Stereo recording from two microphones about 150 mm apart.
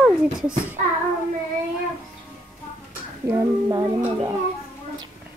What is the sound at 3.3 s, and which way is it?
Speech, 25° right (ahead or behind).